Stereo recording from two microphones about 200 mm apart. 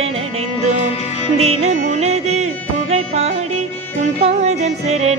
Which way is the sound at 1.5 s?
35° right (ahead or behind).